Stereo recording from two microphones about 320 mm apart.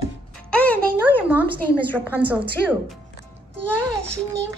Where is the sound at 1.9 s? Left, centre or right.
Centre.